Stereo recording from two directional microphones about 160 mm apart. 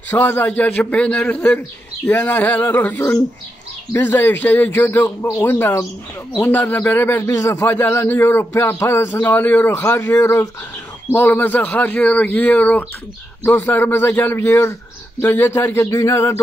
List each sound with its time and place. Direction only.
0.1 s a man's voice: 10° left (ahead or behind)